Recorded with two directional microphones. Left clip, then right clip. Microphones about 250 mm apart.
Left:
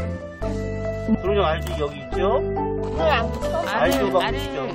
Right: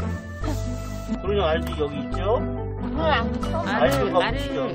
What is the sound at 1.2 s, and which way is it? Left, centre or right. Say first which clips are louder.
Speech: left 1 dB; centre.